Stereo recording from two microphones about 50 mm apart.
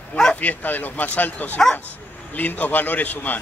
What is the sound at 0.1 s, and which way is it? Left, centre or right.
Speech, left.